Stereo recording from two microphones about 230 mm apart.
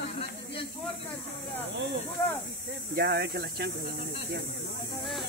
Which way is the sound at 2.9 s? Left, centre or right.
Right.